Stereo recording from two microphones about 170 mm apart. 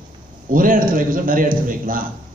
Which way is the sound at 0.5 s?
55° right (ahead or behind).